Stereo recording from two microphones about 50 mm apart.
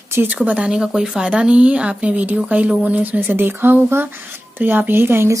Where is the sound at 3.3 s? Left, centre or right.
Right.